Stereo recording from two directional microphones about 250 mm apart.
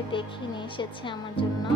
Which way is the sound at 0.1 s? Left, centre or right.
Centre.